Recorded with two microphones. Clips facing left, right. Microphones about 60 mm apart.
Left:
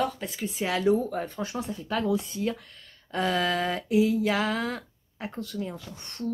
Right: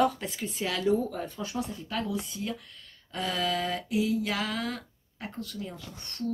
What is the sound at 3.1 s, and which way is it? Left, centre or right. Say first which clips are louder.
Female singing: left 4 dB; left.